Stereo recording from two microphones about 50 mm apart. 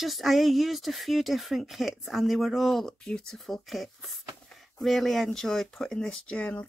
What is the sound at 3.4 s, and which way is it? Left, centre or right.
Speech, centre.